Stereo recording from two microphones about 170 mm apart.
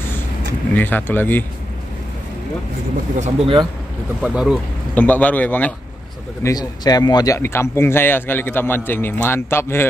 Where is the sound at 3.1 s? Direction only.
40° right (ahead or behind).